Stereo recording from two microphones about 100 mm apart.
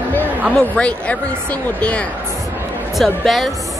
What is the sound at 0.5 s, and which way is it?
Speech, 10° left (ahead or behind).